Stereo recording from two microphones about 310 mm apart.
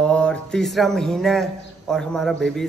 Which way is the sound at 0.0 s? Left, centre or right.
Centre.